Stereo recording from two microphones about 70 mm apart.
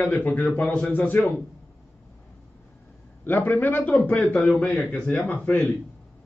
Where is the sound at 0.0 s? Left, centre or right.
Left.